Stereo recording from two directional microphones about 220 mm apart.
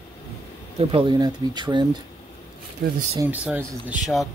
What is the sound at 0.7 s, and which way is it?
Speech, 25° right (ahead or behind).